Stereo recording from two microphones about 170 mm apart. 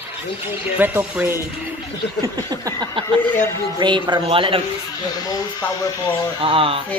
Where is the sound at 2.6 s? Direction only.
25° right (ahead or behind).